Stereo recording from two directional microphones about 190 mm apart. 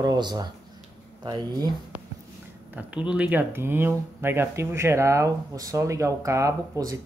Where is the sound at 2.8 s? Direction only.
5° right (ahead or behind).